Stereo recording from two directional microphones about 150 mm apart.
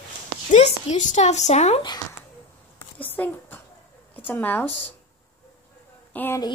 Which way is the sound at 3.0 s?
10° left (ahead or behind).